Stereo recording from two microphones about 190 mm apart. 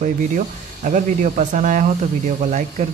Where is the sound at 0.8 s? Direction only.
40° right (ahead or behind).